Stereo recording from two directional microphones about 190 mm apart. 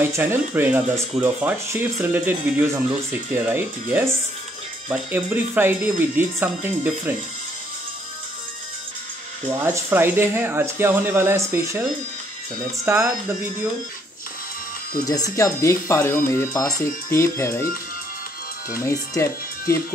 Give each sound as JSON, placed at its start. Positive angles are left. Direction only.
{"t": 0.0, "sound": "speech", "side_deg": -10}
{"t": 9.5, "sound": "speech", "side_deg": -10}
{"t": 12.8, "sound": "speech", "side_deg": -10}
{"t": 15.0, "sound": "speech", "side_deg": 20}
{"t": 18.8, "sound": "speech", "side_deg": 15}